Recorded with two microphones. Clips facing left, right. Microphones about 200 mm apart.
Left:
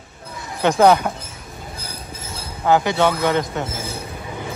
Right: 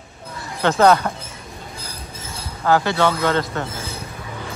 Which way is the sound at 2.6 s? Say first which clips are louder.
Left 1 dB; 20° left (ahead or behind).